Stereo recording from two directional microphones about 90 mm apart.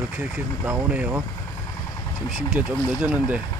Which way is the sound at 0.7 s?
20° right (ahead or behind).